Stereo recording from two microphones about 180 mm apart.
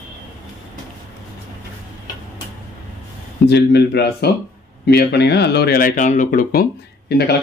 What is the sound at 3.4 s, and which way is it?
Speech, 65° left (ahead or behind).